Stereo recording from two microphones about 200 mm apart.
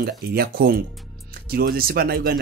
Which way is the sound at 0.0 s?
50° right (ahead or behind).